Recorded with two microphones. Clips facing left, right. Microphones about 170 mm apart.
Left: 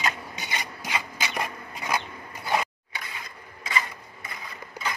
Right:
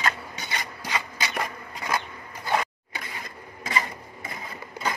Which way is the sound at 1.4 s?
15° left (ahead or behind).